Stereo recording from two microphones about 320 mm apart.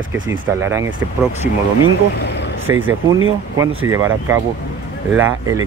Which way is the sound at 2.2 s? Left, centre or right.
Left.